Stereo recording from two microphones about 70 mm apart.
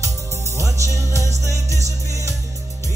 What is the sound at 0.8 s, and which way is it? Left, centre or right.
Music, right.